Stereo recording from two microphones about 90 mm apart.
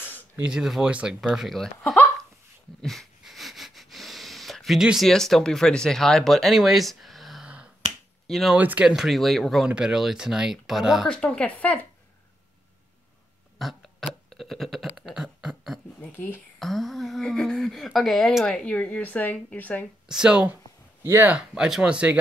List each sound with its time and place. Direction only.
0.4 s speech: 10° right (ahead or behind)
2.8 s wheeze: 5° left (ahead or behind)
8.3 s speech: centre (ahead or behind)
8.5 s speech: 15° right (ahead or behind)
8.9 s speech: centre (ahead or behind)
9.7 s speech: 10° right (ahead or behind)
11.1 s speech: 10° left (ahead or behind)
13.6 s a sound: centre (ahead or behind)
16.0 s a sound: 25° left (ahead or behind)
16.5 s a woman's voice: centre (ahead or behind); by 19.9 s 20° left (ahead or behind)
20.1 s speech: 10° right (ahead or behind)
21.0 s speech: 25° right (ahead or behind)
21.3 s speech: 10° right (ahead or behind)